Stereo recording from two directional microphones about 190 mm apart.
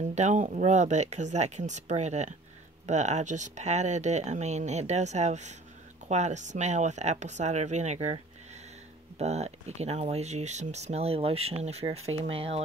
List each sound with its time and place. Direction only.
0.1 s speech: 35° right (ahead or behind)
9.2 s speech: 35° right (ahead or behind)